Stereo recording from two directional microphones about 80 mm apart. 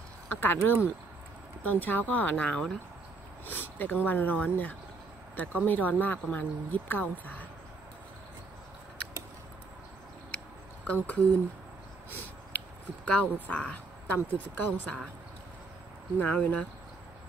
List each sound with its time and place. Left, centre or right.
0.3 s speech: left
10.9 s speech: centre
12.5 s speech: centre
16.2 s speech: left